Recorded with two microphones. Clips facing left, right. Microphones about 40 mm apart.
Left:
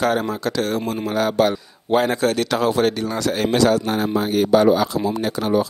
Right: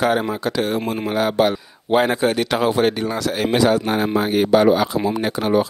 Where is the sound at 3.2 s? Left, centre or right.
Centre; by 5.7 s right.